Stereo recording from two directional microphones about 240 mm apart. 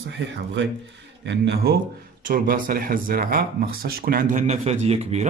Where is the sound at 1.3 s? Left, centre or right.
Right.